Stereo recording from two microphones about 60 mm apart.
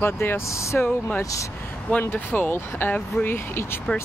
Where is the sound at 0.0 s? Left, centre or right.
Left.